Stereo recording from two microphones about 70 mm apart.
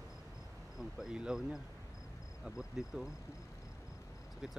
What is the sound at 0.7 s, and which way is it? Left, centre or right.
Speech, centre.